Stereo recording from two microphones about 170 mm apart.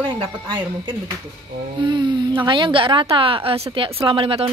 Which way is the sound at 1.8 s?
25° right (ahead or behind).